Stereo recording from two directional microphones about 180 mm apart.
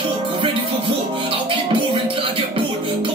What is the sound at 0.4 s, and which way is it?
Music, 25° right (ahead or behind).